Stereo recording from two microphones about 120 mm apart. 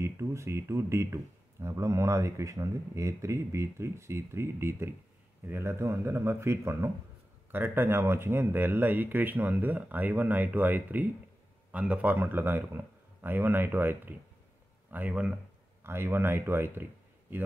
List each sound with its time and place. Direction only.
0.0 s speech: 25° right (ahead or behind)